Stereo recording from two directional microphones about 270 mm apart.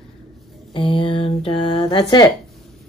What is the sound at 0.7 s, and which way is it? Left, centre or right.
Speech, centre.